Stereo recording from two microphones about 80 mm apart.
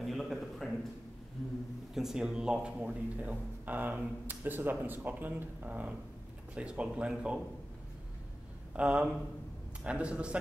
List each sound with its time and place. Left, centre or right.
0.0 s a sound: centre
2.0 s a man's voice: centre
8.7 s speech: centre